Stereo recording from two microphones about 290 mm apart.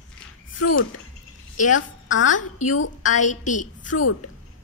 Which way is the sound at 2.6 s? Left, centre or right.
Left.